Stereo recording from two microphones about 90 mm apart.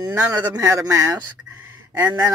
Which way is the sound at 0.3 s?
40° right (ahead or behind).